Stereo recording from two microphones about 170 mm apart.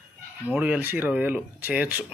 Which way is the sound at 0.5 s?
10° right (ahead or behind).